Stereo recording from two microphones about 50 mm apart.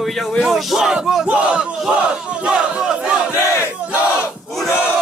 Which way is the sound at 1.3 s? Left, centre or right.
Centre.